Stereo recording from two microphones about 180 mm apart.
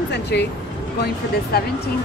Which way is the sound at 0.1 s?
70° left (ahead or behind).